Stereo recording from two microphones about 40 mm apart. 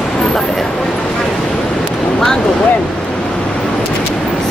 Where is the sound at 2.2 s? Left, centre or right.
Centre.